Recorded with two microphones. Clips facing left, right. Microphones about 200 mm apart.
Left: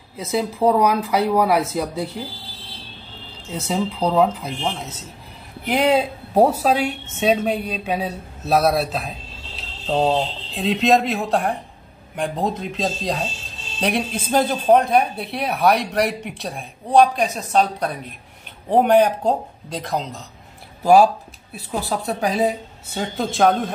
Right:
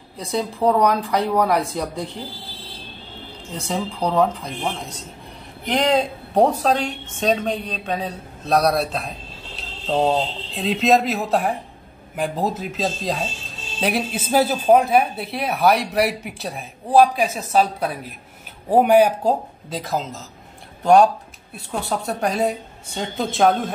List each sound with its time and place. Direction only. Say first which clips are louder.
0.2 s speech: left 2 dB; 5° left (ahead or behind)
3.5 s speech: left 3 dB; 5° left (ahead or behind)
5.7 s a woman's voice: left 1 dB; 5° left (ahead or behind)